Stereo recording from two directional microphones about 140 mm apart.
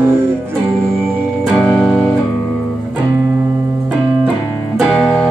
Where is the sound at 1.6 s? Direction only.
5° left (ahead or behind).